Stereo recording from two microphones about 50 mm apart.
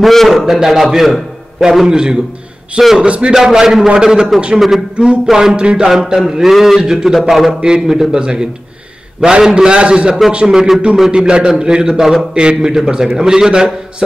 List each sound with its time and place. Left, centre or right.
0.0 s a man's voice: centre
3.1 s a man's voice: right
3.3 s a man's voice: centre
4.9 s a man's voice: centre
6.8 s a man's voice: centre
7.6 s a man's voice: centre
12.4 s a man's voice: centre